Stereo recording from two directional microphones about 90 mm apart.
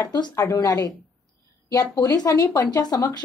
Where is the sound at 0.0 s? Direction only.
45° left (ahead or behind).